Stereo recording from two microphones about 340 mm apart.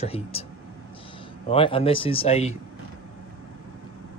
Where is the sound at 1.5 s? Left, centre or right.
Centre.